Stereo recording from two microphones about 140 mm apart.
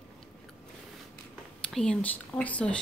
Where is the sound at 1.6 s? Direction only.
5° left (ahead or behind).